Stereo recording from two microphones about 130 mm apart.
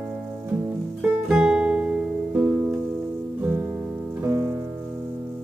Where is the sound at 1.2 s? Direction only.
5° right (ahead or behind).